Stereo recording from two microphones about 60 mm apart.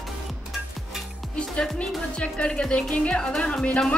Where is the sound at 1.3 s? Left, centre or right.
Centre.